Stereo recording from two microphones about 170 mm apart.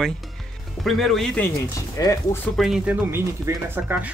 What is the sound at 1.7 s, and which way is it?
Speech, 20° left (ahead or behind).